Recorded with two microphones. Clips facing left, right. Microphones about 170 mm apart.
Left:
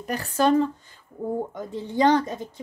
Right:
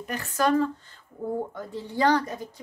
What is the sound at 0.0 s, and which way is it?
A woman's voice, 35° left (ahead or behind).